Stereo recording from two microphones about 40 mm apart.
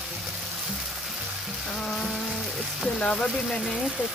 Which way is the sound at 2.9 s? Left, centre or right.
Left.